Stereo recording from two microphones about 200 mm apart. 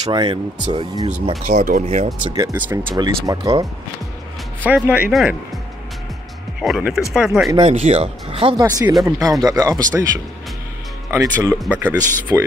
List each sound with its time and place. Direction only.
0.1 s speech: 20° right (ahead or behind)
1.4 s speech: 45° right (ahead or behind)
2.3 s speech: 15° right (ahead or behind)
4.6 s speech: 5° right (ahead or behind)
6.6 s speech: centre (ahead or behind)
7.5 s speech: 30° right (ahead or behind)
8.5 s speech: 15° right (ahead or behind)
11.1 s speech: 15° right (ahead or behind)